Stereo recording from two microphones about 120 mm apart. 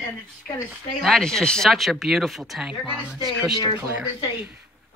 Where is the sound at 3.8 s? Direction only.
10° right (ahead or behind).